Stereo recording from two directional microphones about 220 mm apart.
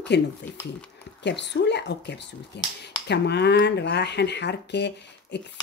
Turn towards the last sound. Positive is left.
turn(degrees=50)  # may be behind; listen again after turning